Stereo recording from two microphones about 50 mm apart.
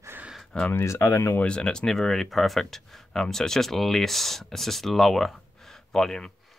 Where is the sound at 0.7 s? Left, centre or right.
Left.